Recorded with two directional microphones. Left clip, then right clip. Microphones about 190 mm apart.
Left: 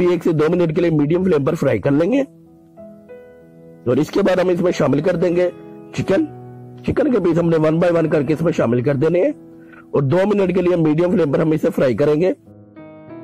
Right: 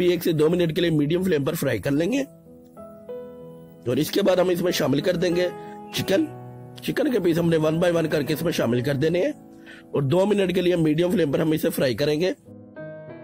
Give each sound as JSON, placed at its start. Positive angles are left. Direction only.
{"t": 0.0, "sound": "speech", "side_deg": 30}
{"t": 3.8, "sound": "speech", "side_deg": 35}
{"t": 6.9, "sound": "a man's voice", "side_deg": 35}
{"t": 11.7, "sound": "speech", "side_deg": 40}